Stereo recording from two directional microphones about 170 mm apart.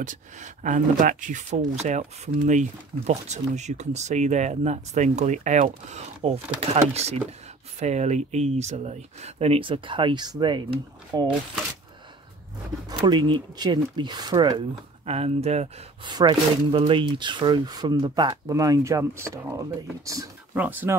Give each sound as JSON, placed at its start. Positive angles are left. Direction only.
{"t": 0.0, "sound": "speech", "side_deg": -45}
{"t": 13.0, "sound": "speech", "side_deg": -25}
{"t": 15.0, "sound": "speech", "side_deg": -40}
{"t": 16.1, "sound": "speech", "side_deg": -25}